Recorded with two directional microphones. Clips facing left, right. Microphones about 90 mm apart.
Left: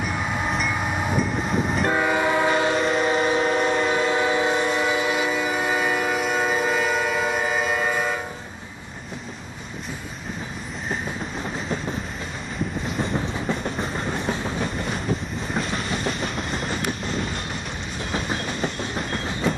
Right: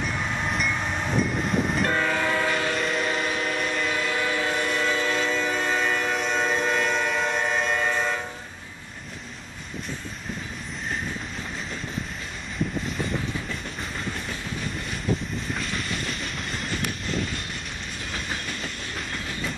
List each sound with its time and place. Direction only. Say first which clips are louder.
0.0 s train: left 2 dB; 10° left (ahead or behind)
1.9 s train: left 4 dB; 15° left (ahead or behind)
2.8 s train: left 5 dB; centre (ahead or behind)
3.3 s train: left 7 dB; 40° left (ahead or behind)
3.9 s train: left 5 dB; 25° left (ahead or behind); by 8.2 s 5° left (ahead or behind)
13.5 s train: left 7 dB; 40° left (ahead or behind)
16.1 s train: left 6 dB; centre (ahead or behind)
18.6 s train: left 7 dB; 40° left (ahead or behind)